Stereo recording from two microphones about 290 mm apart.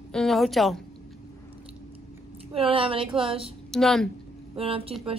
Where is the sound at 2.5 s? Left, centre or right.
Centre.